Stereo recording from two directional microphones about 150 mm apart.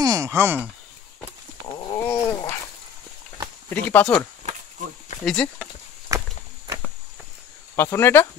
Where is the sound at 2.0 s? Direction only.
20° left (ahead or behind).